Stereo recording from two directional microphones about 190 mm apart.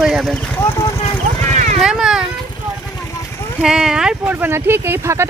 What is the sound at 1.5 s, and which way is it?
Vehicle, 40° right (ahead or behind).